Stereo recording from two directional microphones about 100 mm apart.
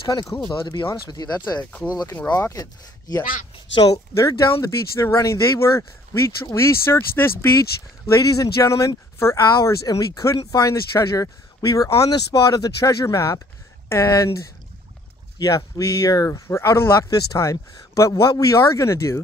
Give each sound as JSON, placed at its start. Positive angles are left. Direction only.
{"t": 0.1, "sound": "speech", "side_deg": 35}
{"t": 0.6, "sound": "speech", "side_deg": 50}
{"t": 0.8, "sound": "speech", "side_deg": 40}
{"t": 1.6, "sound": "speech", "side_deg": 15}
{"t": 2.5, "sound": "speech", "side_deg": 40}
{"t": 8.1, "sound": "speech", "side_deg": 35}
{"t": 17.1, "sound": "speech", "side_deg": 40}